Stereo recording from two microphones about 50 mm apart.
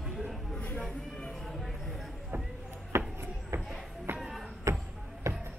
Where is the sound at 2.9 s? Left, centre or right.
Right.